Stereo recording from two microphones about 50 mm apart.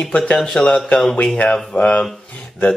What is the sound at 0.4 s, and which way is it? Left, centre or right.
Speech, centre.